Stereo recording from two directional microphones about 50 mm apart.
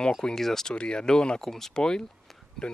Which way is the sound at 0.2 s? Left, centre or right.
Centre.